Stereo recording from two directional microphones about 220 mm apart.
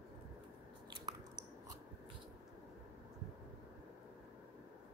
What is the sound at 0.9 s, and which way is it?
Chewing, 20° right (ahead or behind).